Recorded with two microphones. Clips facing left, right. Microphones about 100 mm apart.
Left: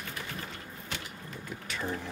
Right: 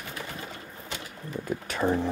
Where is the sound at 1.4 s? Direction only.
45° right (ahead or behind).